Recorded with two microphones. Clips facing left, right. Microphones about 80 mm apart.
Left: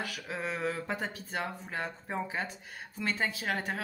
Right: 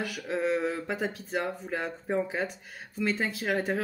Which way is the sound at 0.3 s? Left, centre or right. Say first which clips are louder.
Right 7 dB; centre.